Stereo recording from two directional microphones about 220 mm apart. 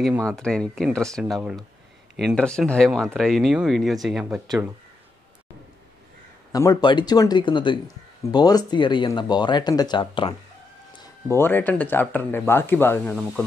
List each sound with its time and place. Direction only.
0.0 s speech: centre (ahead or behind)
6.5 s speech: 15° left (ahead or behind)
11.3 s speech: 10° left (ahead or behind)